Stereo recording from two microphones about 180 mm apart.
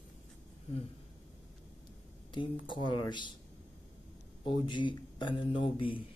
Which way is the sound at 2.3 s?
25° left (ahead or behind).